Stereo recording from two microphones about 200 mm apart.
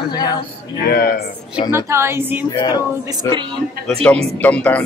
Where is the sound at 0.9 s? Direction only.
50° left (ahead or behind).